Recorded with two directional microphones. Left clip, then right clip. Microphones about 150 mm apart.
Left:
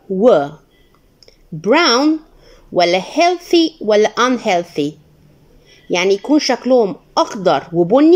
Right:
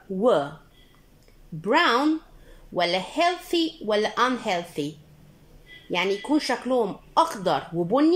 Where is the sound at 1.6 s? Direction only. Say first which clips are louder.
Left 8 dB; 20° left (ahead or behind).